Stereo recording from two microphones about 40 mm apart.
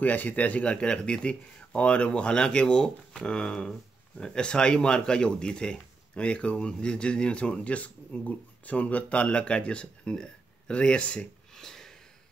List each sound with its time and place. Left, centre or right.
0.0 s speech: left
0.7 s speech: left
11.5 s a sound: centre